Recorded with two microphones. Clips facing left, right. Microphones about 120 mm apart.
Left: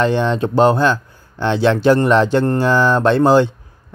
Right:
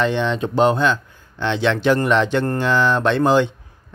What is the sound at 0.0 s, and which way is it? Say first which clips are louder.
Speech: left 3 dB; 40° left (ahead or behind).